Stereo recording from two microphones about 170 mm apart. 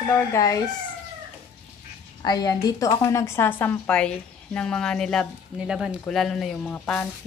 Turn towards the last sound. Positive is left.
turn(degrees=5)  # may be behind; listen again after turning